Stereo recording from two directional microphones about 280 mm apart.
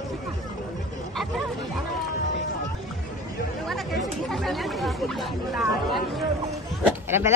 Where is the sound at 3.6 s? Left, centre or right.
Centre.